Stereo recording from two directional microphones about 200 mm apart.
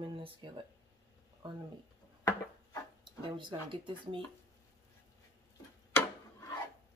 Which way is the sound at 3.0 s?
25° right (ahead or behind).